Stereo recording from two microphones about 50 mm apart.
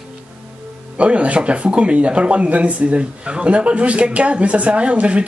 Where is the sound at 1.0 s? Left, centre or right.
Right.